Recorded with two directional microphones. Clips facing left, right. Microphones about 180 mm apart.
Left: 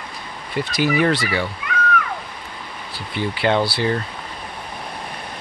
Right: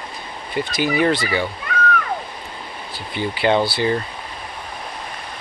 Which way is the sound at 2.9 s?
Centre (ahead or behind).